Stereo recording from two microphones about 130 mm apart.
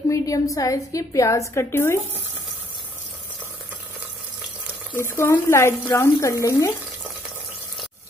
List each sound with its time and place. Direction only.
0.1 s a woman's voice: 25° left (ahead or behind)
4.9 s a woman's voice: 20° left (ahead or behind)